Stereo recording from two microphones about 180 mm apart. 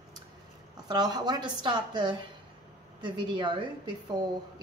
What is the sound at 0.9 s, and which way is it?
A woman's voice, 20° right (ahead or behind).